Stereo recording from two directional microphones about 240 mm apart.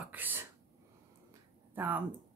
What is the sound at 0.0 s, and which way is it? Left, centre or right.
Speech, centre.